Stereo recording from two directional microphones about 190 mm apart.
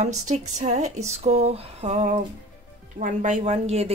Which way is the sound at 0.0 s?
35° right (ahead or behind).